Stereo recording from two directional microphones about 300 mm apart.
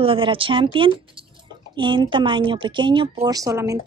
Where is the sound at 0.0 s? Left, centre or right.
Centre.